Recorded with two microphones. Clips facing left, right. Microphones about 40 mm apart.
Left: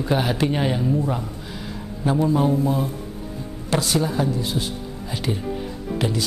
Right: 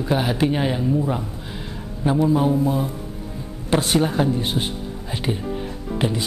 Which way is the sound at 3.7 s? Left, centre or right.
Right.